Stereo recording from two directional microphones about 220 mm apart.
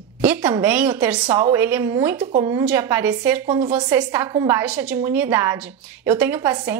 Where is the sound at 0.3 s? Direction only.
5° right (ahead or behind).